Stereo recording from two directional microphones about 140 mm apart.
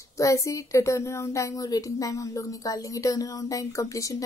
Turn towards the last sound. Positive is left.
turn(degrees=25)  # may be behind; listen again after turning